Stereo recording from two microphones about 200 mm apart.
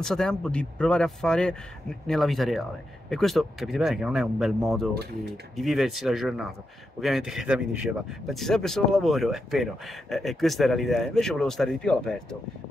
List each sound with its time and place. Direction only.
0.0 s speech: centre (ahead or behind)